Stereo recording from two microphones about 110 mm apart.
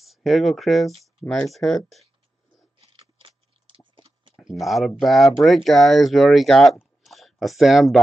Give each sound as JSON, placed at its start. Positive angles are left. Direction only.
{"t": 0.0, "sound": "speech", "side_deg": 0}
{"t": 2.9, "sound": "patter", "side_deg": -50}
{"t": 4.4, "sound": "speech", "side_deg": 0}
{"t": 7.1, "sound": "a sound", "side_deg": 0}